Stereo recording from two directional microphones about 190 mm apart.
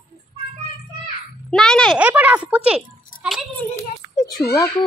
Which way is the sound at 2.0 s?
10° right (ahead or behind).